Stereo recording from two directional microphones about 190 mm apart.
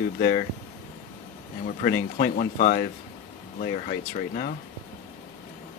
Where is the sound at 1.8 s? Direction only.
50° left (ahead or behind).